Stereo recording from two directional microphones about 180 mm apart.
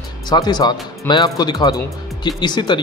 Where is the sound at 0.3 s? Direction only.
25° left (ahead or behind).